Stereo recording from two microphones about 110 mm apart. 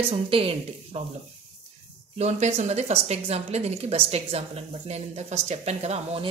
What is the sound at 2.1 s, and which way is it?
A woman's voice, 85° right.